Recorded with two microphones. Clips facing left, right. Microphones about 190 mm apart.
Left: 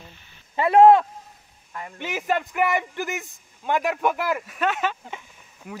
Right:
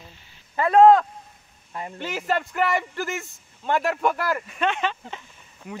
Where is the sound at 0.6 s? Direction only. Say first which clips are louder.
Even; 20° left (ahead or behind).